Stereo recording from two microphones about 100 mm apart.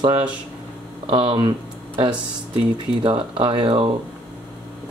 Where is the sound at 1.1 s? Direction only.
60° right (ahead or behind).